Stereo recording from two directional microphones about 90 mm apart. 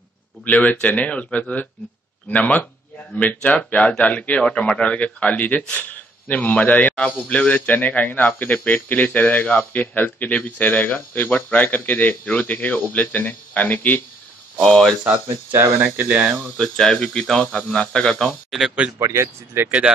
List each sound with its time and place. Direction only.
0.5 s a man's voice: 15° left (ahead or behind)
14.6 s a man's voice: 5° left (ahead or behind)
15.2 s speech: 35° right (ahead or behind)
15.8 s speech: 15° right (ahead or behind)
16.5 s a man's voice: 5° left (ahead or behind)
18.9 s speech: 30° right (ahead or behind)